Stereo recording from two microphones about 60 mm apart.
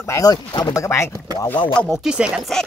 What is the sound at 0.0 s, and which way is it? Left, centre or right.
Speech, left.